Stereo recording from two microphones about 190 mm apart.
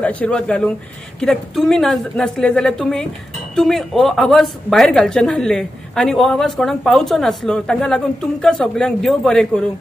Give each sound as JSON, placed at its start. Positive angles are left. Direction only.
{"t": 0.0, "sound": "speech", "side_deg": 5}